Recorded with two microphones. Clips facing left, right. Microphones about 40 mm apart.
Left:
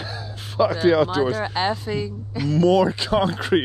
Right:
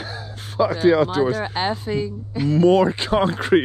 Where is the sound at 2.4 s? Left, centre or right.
Right.